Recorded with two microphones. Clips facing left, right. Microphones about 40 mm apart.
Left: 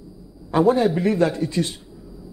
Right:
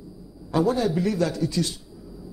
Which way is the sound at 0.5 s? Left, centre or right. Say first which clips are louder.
Left 5 dB; left.